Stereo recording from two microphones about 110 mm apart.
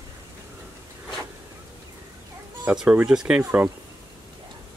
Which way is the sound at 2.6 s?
10° right (ahead or behind).